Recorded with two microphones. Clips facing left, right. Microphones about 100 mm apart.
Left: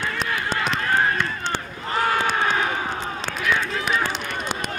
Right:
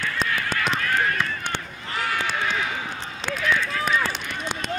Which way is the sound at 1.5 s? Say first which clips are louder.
Left 4 dB; 40° left (ahead or behind).